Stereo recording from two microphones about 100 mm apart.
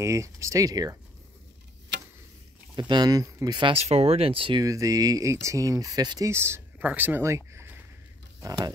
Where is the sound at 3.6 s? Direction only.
85° right; by 4.6 s 60° right (ahead or behind).